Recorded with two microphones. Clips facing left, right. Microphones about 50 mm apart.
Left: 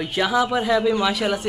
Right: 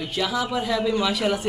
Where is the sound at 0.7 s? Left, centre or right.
Centre.